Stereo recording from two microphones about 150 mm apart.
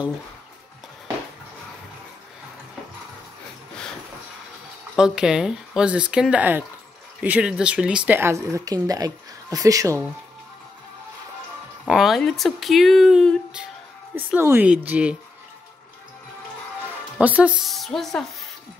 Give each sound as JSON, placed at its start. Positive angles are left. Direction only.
{"t": 4.9, "sound": "speech", "side_deg": -5}
{"t": 11.9, "sound": "speech", "side_deg": 0}
{"t": 14.1, "sound": "speech", "side_deg": -15}
{"t": 17.2, "sound": "speech", "side_deg": -10}